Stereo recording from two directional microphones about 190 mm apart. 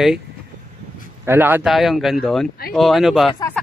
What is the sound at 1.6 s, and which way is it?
Speech, centre (ahead or behind).